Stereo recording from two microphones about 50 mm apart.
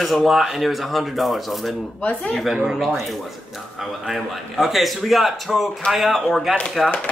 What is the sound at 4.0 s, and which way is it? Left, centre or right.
Speech, centre.